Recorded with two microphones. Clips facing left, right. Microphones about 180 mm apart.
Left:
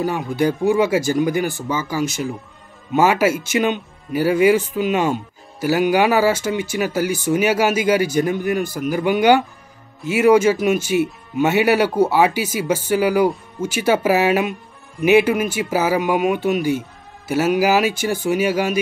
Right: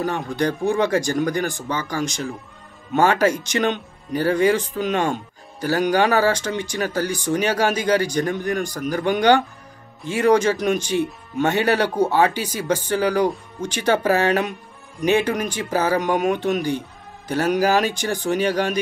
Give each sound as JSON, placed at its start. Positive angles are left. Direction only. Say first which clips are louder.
{"t": 0.0, "sound": "speech", "louder": "left 3 dB", "side_deg": 5}